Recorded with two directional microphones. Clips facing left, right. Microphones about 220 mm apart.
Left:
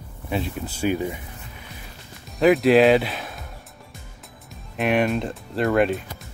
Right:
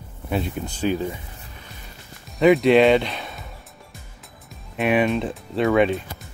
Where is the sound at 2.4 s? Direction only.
Centre (ahead or behind).